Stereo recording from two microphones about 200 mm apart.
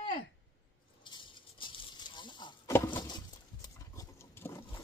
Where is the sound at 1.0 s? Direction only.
25° left (ahead or behind).